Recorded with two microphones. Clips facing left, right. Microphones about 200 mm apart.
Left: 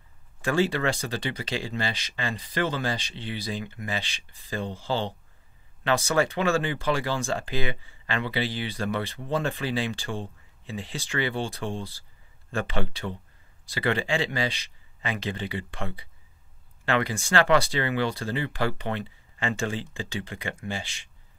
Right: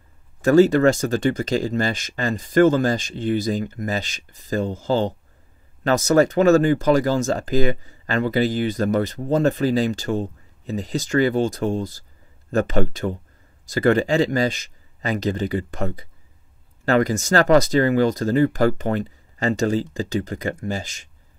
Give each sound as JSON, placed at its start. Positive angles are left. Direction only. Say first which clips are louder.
{"t": 0.4, "sound": "speech", "louder": "right 11 dB", "side_deg": -40}